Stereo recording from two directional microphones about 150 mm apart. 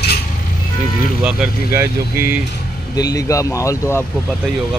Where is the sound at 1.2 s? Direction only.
15° right (ahead or behind).